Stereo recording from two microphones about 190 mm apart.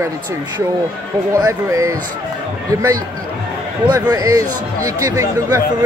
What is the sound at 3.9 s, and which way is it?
Speech, 20° right (ahead or behind).